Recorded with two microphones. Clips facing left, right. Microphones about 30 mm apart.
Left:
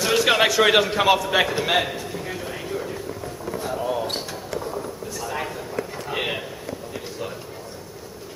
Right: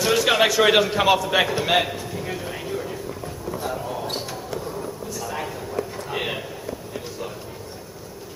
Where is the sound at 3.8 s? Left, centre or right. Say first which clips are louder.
Left 3 dB; centre.